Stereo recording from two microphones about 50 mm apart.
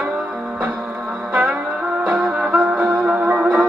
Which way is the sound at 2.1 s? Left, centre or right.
Centre.